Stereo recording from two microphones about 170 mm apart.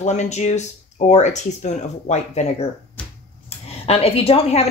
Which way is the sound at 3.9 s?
35° left (ahead or behind).